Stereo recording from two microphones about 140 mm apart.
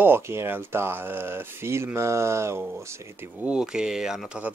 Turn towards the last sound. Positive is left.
turn(degrees=-5)  # may be behind; listen again after turning